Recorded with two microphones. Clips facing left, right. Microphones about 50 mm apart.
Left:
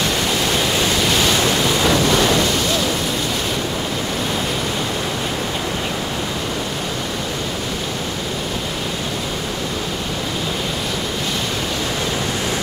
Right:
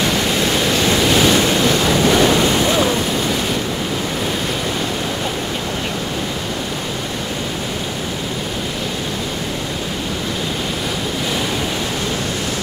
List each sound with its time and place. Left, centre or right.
1.0 s waves: centre